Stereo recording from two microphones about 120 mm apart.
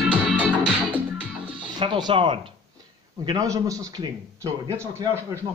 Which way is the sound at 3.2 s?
35° right (ahead or behind).